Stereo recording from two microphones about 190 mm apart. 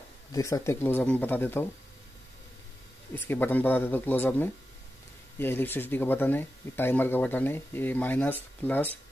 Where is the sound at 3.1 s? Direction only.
10° left (ahead or behind).